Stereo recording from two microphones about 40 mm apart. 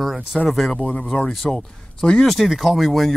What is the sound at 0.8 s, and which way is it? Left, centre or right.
Speech, left.